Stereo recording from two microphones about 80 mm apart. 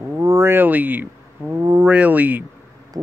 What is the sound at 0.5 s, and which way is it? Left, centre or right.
Speech, right.